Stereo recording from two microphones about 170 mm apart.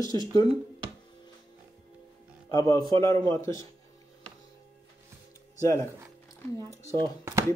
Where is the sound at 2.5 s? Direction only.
20° left (ahead or behind).